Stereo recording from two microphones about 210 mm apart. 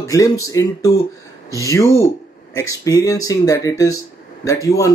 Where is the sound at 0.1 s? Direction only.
15° left (ahead or behind).